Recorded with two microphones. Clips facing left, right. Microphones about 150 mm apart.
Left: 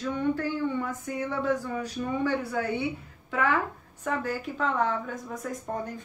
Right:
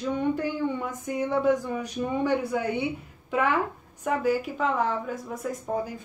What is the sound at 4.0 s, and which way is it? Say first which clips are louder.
A woman's voice: right 5 dB; 10° right (ahead or behind).